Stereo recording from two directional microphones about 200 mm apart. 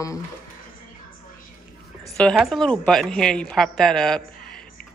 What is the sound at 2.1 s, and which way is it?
A woman's voice, centre (ahead or behind).